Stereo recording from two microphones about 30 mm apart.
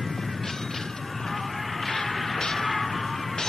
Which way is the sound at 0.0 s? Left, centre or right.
Centre.